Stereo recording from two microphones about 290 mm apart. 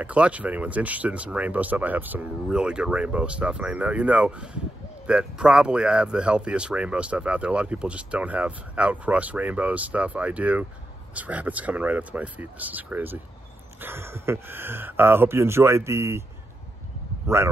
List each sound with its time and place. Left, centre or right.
0.0 s speech: centre